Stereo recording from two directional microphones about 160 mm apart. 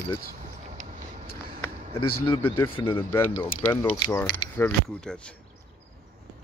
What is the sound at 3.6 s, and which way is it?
Mechanisms, 10° left (ahead or behind).